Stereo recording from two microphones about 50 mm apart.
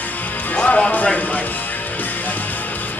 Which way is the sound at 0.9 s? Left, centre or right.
Left.